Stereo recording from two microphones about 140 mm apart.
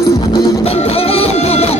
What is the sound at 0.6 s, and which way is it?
Music, 45° left (ahead or behind).